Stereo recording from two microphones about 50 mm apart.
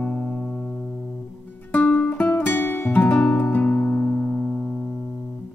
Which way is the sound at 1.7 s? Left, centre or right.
Left.